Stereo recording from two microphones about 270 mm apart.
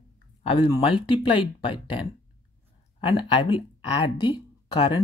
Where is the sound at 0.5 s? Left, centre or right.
Centre.